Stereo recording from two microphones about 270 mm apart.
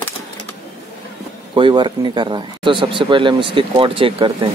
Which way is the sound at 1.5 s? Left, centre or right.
Centre.